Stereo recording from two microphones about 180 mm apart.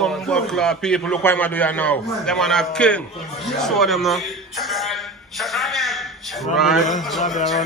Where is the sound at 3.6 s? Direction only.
Centre (ahead or behind).